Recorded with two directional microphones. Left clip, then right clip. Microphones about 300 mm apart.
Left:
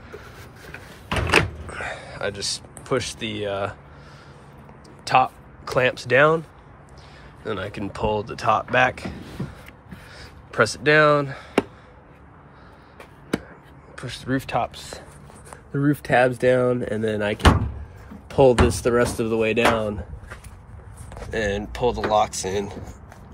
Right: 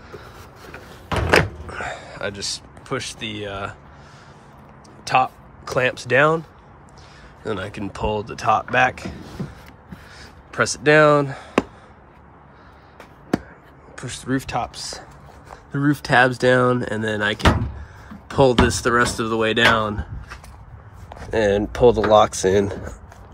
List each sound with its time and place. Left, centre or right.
1.7 s speech: centre
5.0 s speech: centre
7.4 s speech: centre
14.0 s speech: centre
14.7 s speech: right
15.7 s speech: centre
21.3 s speech: right